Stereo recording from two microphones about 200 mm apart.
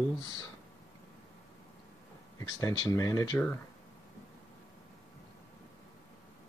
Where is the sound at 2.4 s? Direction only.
20° left (ahead or behind).